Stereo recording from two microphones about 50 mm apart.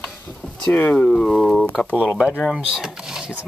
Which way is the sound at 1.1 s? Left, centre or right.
Centre.